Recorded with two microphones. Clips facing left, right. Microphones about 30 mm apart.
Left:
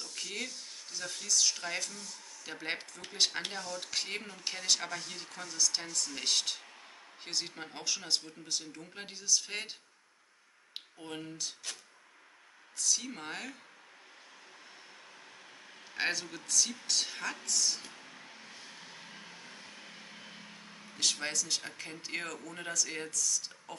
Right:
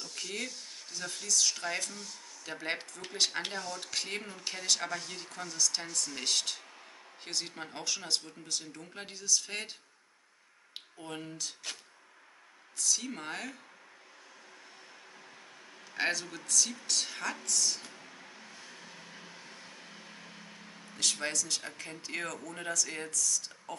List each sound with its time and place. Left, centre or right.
0.0 s speech: centre
10.7 s a sound: centre
11.7 s speech: centre
12.7 s speech: centre
15.9 s speech: centre
21.0 s speech: centre